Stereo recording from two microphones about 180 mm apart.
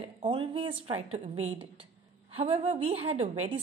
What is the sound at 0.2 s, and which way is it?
A woman's voice, 30° right (ahead or behind).